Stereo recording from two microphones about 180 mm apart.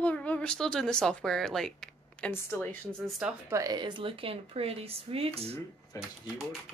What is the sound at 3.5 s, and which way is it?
Speech, 20° right (ahead or behind).